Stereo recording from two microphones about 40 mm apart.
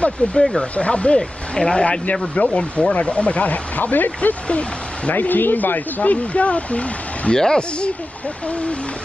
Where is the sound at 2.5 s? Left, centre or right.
Left.